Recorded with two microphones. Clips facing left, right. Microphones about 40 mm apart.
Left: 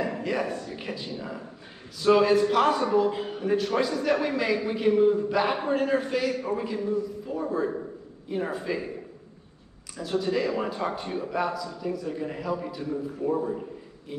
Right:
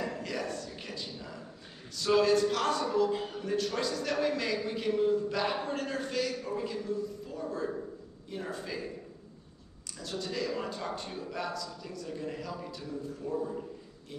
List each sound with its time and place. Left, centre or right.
0.0 s a man's voice: left
10.2 s a man's voice: left